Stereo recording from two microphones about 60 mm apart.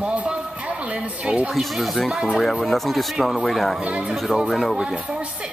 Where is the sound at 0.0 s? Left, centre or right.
Centre.